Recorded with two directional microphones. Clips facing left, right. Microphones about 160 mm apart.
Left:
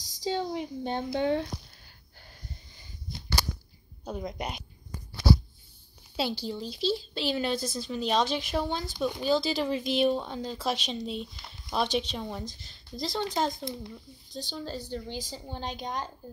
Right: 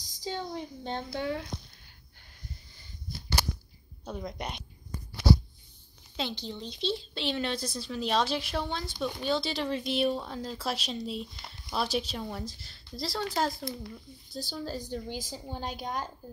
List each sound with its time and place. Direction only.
0.2 s speech: 15° left (ahead or behind)
4.0 s a woman's voice: 10° left (ahead or behind)
6.1 s a woman's voice: 5° left (ahead or behind); by 16.1 s 10° right (ahead or behind)